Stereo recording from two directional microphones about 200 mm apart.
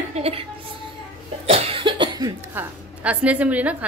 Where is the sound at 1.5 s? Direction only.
30° right (ahead or behind); by 3.7 s 5° right (ahead or behind).